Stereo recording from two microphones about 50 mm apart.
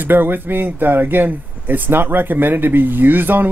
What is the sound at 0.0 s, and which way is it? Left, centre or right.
Speech, right.